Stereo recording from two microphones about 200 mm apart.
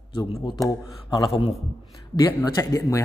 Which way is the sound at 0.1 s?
25° left (ahead or behind).